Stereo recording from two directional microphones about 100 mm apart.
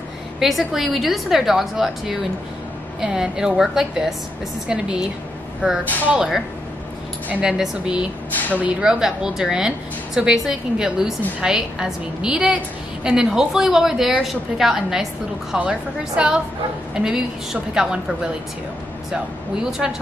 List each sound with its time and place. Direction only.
0.4 s a woman's voice: centre (ahead or behind)
19.8 s a woman's voice: 10° right (ahead or behind)